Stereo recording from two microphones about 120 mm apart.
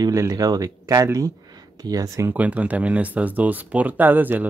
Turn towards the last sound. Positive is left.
turn(degrees=-15)  # may be behind; listen again after turning